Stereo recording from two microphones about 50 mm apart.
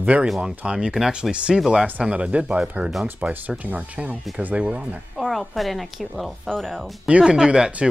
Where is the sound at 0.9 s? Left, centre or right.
Centre.